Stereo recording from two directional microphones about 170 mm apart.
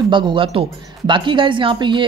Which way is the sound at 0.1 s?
30° right (ahead or behind).